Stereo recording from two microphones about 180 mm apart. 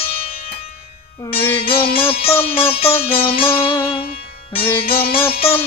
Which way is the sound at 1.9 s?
30° left (ahead or behind).